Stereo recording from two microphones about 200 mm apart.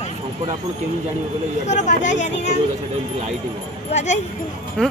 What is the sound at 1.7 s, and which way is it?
Speech, 35° left (ahead or behind).